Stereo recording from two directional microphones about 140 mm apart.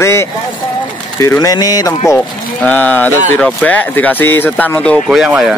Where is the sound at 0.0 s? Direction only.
20° left (ahead or behind).